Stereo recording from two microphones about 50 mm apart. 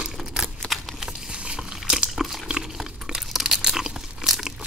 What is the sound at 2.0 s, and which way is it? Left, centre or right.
Crunch, centre.